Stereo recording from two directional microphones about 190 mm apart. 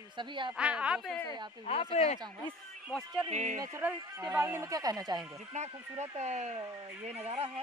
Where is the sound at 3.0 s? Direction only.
20° right (ahead or behind).